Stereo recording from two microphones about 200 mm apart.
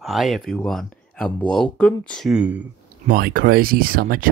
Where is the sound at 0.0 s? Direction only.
Centre (ahead or behind).